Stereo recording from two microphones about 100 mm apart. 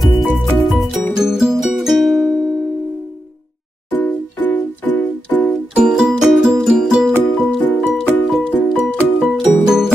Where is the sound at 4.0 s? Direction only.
15° left (ahead or behind).